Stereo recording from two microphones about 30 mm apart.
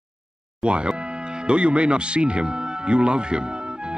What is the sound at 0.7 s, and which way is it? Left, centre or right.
Speech, right.